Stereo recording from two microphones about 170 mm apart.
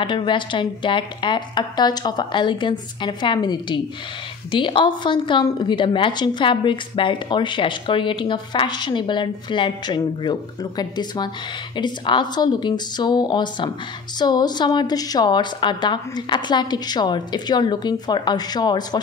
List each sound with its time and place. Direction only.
0.0 s a woman's voice: 30° left (ahead or behind)